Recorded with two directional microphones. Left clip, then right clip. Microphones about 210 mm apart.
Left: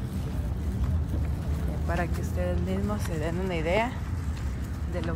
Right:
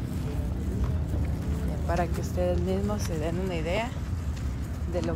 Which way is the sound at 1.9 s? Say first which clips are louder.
Right 2 dB; 10° right (ahead or behind).